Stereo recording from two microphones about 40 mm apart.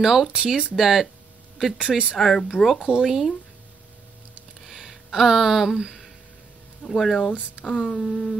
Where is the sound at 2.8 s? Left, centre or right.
Centre.